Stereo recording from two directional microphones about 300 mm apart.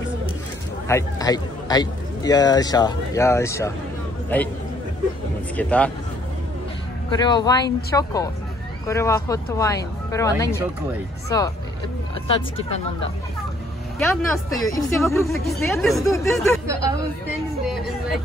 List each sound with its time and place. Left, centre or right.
0.8 s a man's voice: centre
5.6 s speech: centre
7.1 s a man's voice: centre
13.9 s a man's voice: centre